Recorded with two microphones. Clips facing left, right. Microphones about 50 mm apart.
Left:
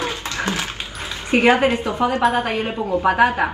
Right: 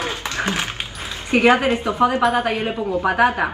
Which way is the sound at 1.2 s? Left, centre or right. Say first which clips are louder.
Even; left.